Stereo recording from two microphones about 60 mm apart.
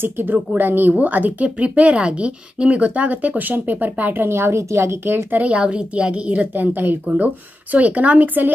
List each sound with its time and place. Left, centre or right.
0.0 s a woman's voice: right
5.4 s a woman's voice: centre